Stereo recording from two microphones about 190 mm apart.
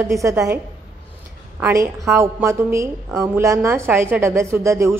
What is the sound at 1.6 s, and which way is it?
A woman's voice, 15° right (ahead or behind).